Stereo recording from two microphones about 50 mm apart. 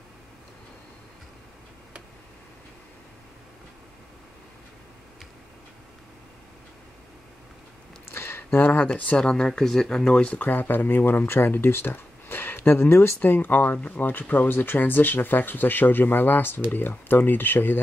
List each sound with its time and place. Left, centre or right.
8.0 s a sound: left
8.8 s speech: left
10.4 s speech: left